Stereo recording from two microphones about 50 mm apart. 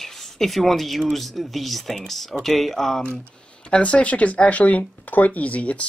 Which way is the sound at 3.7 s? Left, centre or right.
Left.